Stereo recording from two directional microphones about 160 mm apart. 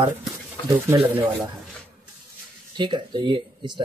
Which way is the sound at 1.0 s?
10° right (ahead or behind).